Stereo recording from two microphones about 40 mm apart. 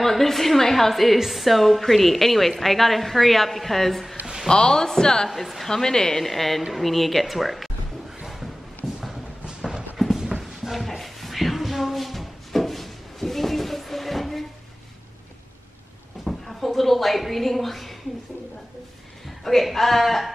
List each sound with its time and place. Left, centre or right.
0.0 s a woman's voice: centre
4.5 s a woman's voice: centre
5.3 s a woman's voice: centre
5.7 s a woman's voice: centre
6.2 s a woman's voice: centre
9.5 s clip-clop: centre
9.9 s clip-clop: centre
10.4 s a sound: centre
16.3 s a sound: centre
19.2 s speech: centre